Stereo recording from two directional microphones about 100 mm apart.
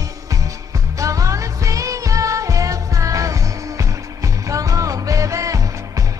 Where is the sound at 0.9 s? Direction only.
35° right (ahead or behind).